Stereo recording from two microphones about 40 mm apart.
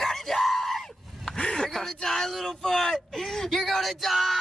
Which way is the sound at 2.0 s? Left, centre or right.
Centre.